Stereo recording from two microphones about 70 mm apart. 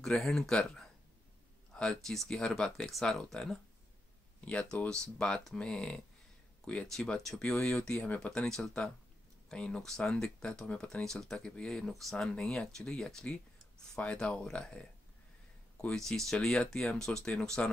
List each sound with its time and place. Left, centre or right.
0.0 s speech: centre
1.7 s a sound: centre
2.2 s speech: centre
4.4 s speech: centre
6.9 s speech: centre